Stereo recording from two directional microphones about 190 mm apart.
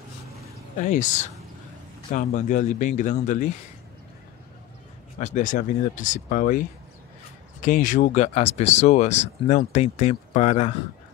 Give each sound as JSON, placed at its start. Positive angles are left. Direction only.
{"t": 0.7, "sound": "speech", "side_deg": 40}
{"t": 5.2, "sound": "speech", "side_deg": 40}
{"t": 7.6, "sound": "speech", "side_deg": 45}